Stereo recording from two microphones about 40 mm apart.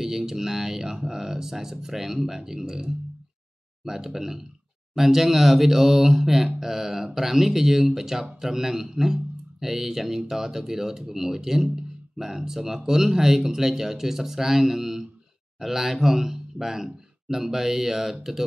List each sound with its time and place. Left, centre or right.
0.0 s speech: centre